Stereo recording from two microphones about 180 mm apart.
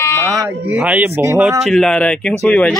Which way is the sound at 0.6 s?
10° right (ahead or behind).